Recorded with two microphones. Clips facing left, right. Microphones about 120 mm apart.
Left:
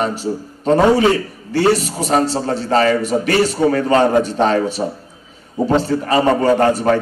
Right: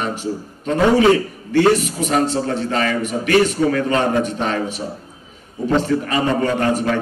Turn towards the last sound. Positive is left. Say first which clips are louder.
# left 5 dB
turn(degrees=35)  # may be behind; listen again after turning